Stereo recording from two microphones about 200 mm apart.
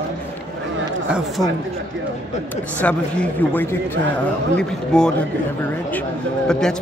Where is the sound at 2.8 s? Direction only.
5° left (ahead or behind).